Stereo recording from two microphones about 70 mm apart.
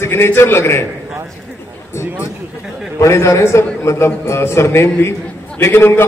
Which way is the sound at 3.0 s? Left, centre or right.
Left.